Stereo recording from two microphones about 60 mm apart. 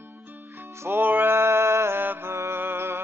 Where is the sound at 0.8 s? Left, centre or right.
Right.